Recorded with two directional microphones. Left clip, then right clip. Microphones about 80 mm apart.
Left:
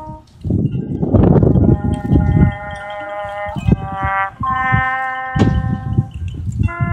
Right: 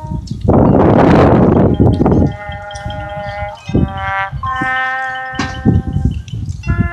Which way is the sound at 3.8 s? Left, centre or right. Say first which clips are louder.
Right 1 dB; right.